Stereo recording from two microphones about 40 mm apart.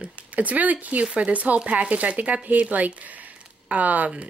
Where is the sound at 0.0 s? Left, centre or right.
Right.